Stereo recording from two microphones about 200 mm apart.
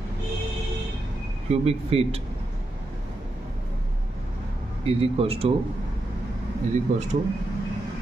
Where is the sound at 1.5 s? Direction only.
30° right (ahead or behind).